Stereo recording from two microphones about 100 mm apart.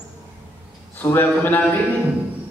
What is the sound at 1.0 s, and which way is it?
Speech, 20° left (ahead or behind).